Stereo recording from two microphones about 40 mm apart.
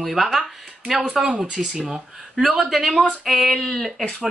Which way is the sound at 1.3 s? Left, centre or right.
Right.